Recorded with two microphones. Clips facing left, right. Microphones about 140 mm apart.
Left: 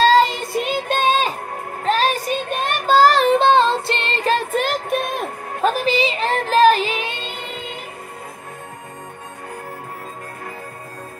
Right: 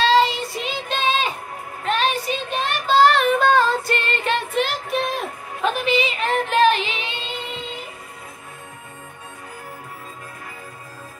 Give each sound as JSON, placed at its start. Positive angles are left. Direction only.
{"t": 0.0, "sound": "child singing", "side_deg": 45}